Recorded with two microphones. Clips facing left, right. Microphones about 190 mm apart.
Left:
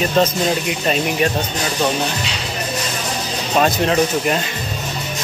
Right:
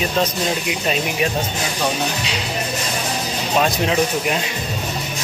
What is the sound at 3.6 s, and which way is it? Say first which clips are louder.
Speech: left 2 dB; centre (ahead or behind).